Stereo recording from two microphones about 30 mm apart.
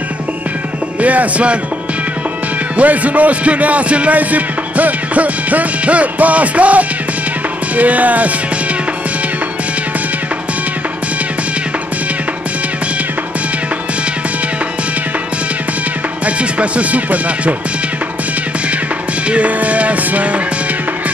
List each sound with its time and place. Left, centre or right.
1.0 s speech: right
2.8 s speech: right
4.1 s music: right
16.3 s speech: right
19.2 s music: right